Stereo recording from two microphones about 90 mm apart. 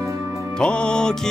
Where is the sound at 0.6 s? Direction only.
10° left (ahead or behind).